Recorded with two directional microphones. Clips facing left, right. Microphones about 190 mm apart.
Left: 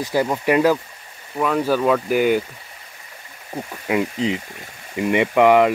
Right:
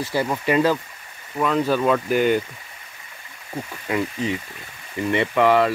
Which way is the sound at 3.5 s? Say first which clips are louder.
Left 3 dB; 15° left (ahead or behind).